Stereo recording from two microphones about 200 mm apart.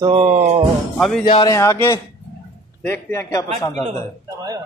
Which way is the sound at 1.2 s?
20° left (ahead or behind).